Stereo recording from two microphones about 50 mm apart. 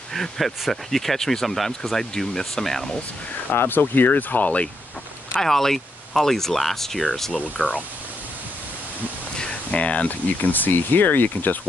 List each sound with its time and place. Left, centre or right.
0.1 s speech: centre
3.5 s speech: left
5.4 s speech: centre
7.5 s speech: left
9.4 s speech: left